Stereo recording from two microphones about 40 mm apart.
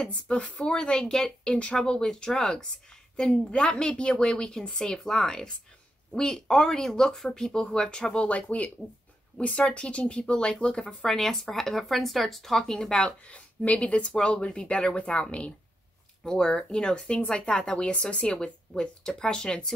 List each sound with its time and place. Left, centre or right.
0.1 s speech: left
8.3 s speech: left
11.1 s speech: centre
13.0 s speech: left
16.4 s speech: left